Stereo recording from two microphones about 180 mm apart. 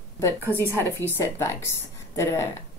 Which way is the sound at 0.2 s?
15° left (ahead or behind).